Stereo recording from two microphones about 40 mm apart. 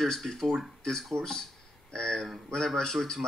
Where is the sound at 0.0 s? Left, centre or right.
Centre.